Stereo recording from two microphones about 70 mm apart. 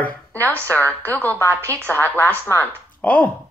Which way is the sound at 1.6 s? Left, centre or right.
Right.